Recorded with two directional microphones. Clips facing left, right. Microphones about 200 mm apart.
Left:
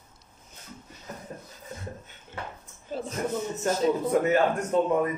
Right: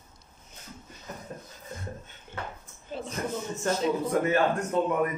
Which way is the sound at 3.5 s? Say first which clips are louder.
Left 1 dB; 20° left (ahead or behind).